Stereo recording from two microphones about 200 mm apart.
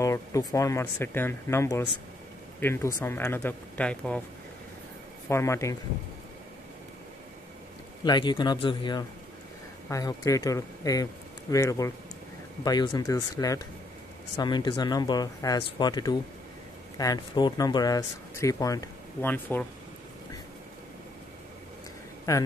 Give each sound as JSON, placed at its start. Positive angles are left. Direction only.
{"t": 0.0, "sound": "speech", "side_deg": 15}
{"t": 5.3, "sound": "speech", "side_deg": 15}
{"t": 8.0, "sound": "speech", "side_deg": 20}
{"t": 22.3, "sound": "speech", "side_deg": 15}